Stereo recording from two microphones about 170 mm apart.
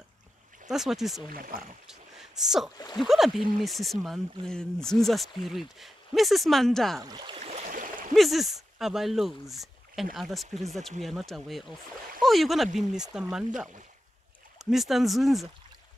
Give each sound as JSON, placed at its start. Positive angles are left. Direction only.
{"t": 0.7, "sound": "speech", "side_deg": 0}
{"t": 1.3, "sound": "speech", "side_deg": -55}
{"t": 1.9, "sound": "a sound", "side_deg": 0}
{"t": 3.0, "sound": "speech", "side_deg": 0}
{"t": 7.0, "sound": "speech", "side_deg": -25}
{"t": 7.3, "sound": "a sound", "side_deg": -40}
{"t": 8.1, "sound": "speech", "side_deg": 0}
{"t": 14.6, "sound": "speech", "side_deg": 0}